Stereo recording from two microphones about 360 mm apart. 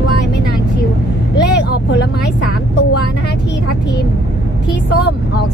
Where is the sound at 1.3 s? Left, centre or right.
Left.